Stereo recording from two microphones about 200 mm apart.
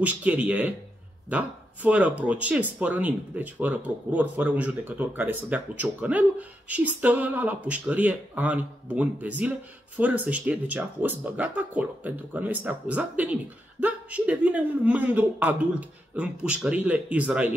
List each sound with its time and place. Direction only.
0.0 s speech: 5° right (ahead or behind)